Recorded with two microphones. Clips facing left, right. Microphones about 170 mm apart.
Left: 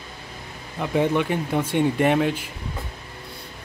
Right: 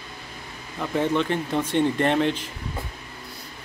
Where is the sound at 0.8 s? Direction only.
15° left (ahead or behind).